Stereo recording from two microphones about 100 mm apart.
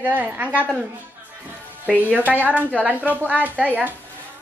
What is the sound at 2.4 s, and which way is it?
Speech, 15° left (ahead or behind).